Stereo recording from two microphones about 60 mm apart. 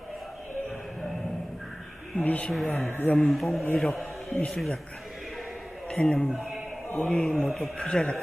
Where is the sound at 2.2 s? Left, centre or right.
Left.